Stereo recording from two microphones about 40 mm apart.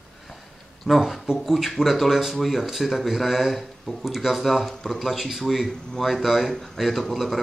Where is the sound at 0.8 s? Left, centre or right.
Centre.